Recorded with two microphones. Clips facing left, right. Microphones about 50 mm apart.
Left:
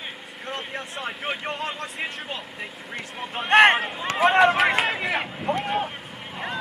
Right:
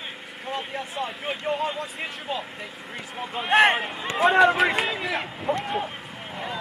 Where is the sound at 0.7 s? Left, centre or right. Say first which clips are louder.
Right 1 dB; left.